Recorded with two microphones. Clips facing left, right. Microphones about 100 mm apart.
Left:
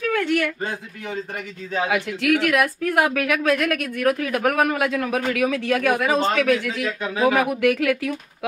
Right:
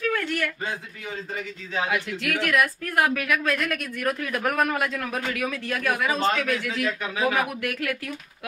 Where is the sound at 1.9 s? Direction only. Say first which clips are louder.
Left 10 dB; 70° left (ahead or behind).